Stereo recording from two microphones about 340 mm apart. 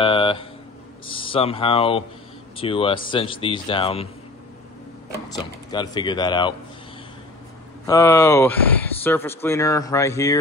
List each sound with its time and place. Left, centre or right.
0.0 s a sound: centre
1.0 s speech: centre
5.3 s speech: centre
7.8 s speech: centre